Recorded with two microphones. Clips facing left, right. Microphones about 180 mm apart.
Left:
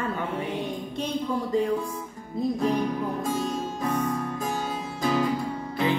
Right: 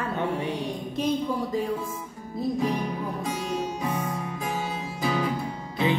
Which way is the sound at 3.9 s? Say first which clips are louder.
Left 3 dB; 10° right (ahead or behind).